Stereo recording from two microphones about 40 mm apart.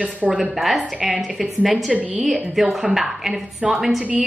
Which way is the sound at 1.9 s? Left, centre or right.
Right.